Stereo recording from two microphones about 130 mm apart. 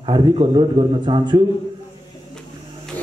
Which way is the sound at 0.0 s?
40° right (ahead or behind).